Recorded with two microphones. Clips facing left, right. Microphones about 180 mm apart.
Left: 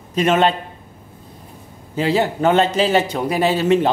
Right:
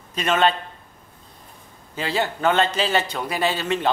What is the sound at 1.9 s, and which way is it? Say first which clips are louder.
Speech: left 7 dB; 10° left (ahead or behind).